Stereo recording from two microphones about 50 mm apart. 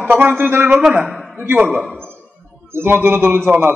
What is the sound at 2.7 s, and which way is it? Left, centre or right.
Speech, right.